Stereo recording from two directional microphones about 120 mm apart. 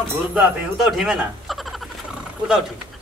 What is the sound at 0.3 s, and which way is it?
Speech, 5° right (ahead or behind).